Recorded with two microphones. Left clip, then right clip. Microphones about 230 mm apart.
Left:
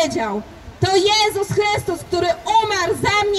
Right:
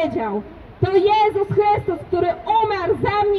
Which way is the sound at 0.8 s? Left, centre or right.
Left.